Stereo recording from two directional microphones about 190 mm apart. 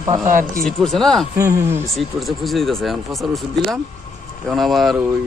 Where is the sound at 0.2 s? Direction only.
45° right (ahead or behind).